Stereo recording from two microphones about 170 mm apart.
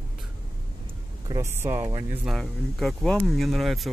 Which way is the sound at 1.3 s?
15° right (ahead or behind).